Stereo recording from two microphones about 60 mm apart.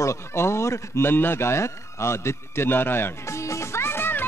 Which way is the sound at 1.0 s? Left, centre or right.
Left.